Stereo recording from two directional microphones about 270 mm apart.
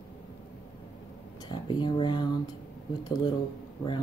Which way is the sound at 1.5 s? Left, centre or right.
Centre.